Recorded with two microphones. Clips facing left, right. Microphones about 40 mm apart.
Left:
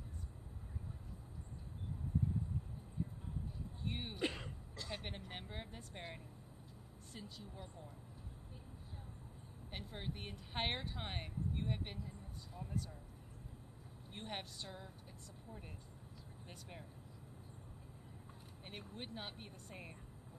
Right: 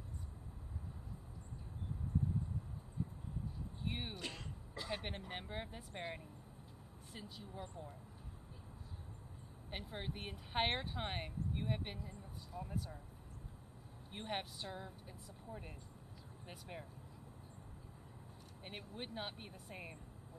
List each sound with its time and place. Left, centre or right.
3.8 s speech: centre
4.2 s throat clearing: left
4.7 s speech: centre
9.7 s speech: centre
14.1 s speech: centre
16.4 s speech: centre
18.6 s speech: centre